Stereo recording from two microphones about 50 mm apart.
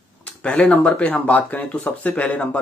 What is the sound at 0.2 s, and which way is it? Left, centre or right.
Speech, left.